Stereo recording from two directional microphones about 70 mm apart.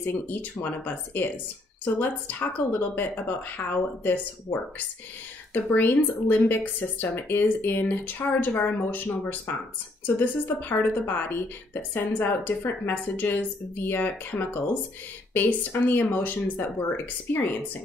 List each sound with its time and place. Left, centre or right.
0.0 s a woman's voice: left